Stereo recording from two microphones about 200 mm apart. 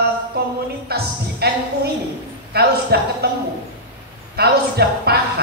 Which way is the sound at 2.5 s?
50° right (ahead or behind).